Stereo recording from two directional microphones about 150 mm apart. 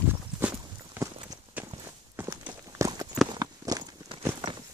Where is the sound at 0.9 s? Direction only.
20° right (ahead or behind).